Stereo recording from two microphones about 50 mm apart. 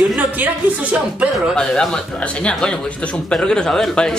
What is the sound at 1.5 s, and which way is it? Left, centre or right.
Speech, centre.